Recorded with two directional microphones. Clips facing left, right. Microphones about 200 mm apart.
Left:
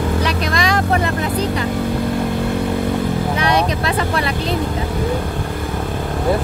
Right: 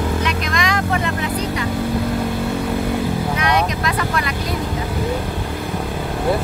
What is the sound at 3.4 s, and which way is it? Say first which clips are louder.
Vehicle: left 2 dB; 30° left (ahead or behind).